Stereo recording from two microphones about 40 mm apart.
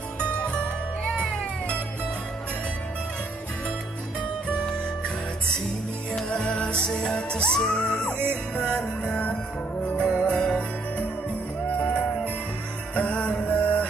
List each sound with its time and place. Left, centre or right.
0.4 s music: left
4.5 s music: left
6.2 s music: left
6.9 s music: centre
7.2 s music: left
7.9 s music: left
9.8 s music: left